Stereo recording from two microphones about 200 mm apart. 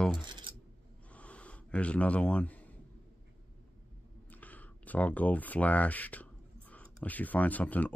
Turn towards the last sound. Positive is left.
turn(degrees=10)  # may be behind; listen again after turning